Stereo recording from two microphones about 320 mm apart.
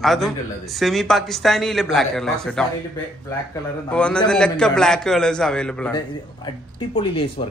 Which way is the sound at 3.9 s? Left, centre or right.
Centre.